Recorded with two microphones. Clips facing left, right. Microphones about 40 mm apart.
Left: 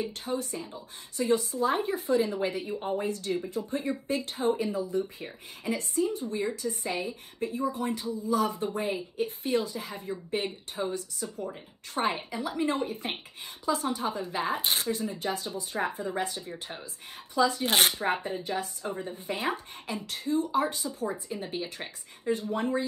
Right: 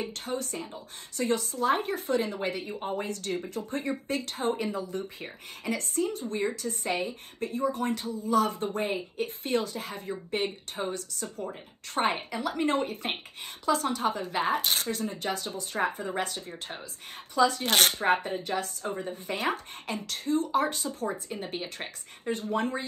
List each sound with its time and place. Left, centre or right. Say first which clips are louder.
0.0 s a woman's voice: left 1 dB; right
3.1 s a woman's voice: left 2 dB; right
10.9 s a woman's voice: left 1 dB; right
12.0 s a woman's voice: right 2 dB; right
14.9 s a woman's voice: left 1 dB; right
17.6 s speech: right 1 dB; centre
17.9 s a woman's voice: right 3 dB; right
18.4 s a woman's voice: right 1 dB; right
21.3 s speech: left 1 dB; right
22.3 s a woman's voice: left 1 dB; right